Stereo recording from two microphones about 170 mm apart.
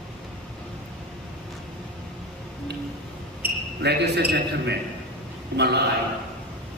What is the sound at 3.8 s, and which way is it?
A man's voice, 80° right.